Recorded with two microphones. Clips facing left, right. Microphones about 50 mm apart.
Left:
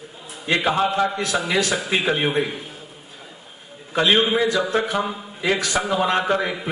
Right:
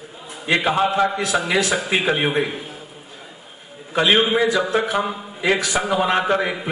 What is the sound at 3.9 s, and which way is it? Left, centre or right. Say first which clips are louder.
A man's voice: right 1 dB; centre.